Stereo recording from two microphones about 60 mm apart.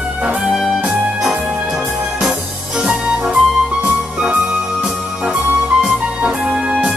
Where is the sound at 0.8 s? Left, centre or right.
Centre.